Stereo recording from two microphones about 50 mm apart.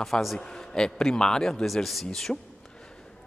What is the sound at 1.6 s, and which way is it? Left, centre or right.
Speech, centre.